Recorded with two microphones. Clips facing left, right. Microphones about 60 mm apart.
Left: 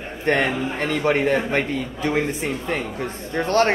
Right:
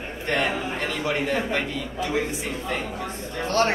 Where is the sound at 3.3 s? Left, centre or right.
Left.